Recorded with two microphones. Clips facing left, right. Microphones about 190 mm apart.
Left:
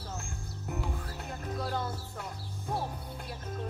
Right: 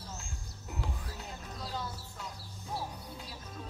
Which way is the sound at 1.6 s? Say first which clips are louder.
Left 5 dB; 60° left (ahead or behind).